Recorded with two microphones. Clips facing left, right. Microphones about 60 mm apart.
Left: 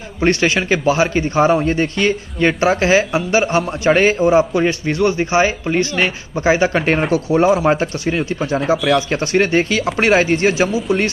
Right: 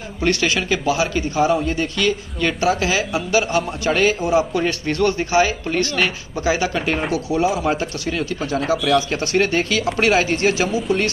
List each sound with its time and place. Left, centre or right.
0.2 s a man's voice: left
4.6 s a man's voice: centre